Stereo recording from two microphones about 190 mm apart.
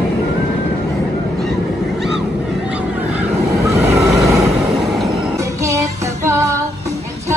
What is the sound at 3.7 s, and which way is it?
Vehicle, 15° right (ahead or behind).